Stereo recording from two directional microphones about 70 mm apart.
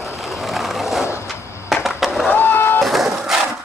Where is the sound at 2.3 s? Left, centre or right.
Left.